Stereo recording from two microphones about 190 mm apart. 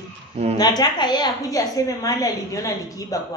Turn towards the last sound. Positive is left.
turn(degrees=15)  # may be behind; listen again after turning